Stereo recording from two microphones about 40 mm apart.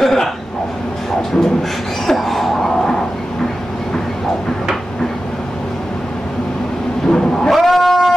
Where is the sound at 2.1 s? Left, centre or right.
Centre.